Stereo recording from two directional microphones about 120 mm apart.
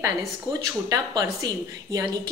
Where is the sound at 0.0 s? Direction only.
30° right (ahead or behind).